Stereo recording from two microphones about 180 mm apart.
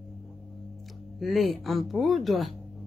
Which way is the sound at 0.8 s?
Centre (ahead or behind).